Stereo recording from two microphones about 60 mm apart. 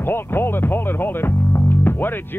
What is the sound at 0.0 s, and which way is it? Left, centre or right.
Speech, left.